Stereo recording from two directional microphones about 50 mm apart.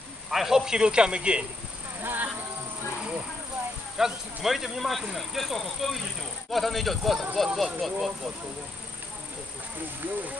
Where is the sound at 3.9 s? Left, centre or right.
Centre.